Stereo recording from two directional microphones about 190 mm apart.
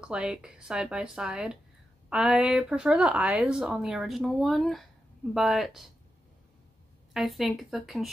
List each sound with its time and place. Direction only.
0.0 s speech: 5° right (ahead or behind)
7.2 s speech: centre (ahead or behind)